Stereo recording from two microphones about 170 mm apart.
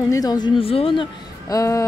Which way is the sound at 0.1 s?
20° left (ahead or behind).